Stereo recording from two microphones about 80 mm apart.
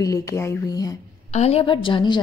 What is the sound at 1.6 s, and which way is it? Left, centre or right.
Speech, left.